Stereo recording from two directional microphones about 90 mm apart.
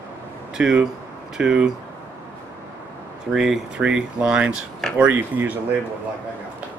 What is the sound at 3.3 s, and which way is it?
Speech, 5° right (ahead or behind).